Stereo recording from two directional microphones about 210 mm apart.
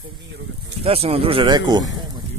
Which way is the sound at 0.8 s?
30° right (ahead or behind).